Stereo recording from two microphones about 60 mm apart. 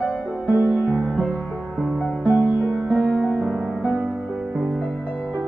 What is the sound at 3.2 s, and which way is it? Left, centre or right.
Music, centre.